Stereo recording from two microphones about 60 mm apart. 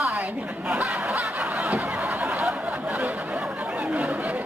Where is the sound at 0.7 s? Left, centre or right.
Right.